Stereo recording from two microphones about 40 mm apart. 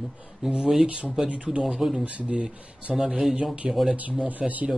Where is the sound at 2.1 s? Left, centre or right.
Right.